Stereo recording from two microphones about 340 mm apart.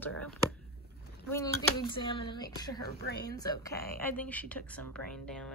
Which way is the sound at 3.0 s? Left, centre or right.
Left.